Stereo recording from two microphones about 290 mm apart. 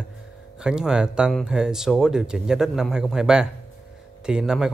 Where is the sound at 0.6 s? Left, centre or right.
Centre.